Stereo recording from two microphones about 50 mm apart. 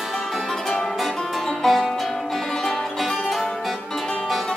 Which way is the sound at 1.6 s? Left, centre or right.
Centre.